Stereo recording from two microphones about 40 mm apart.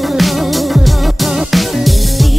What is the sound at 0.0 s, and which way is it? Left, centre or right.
Music, centre.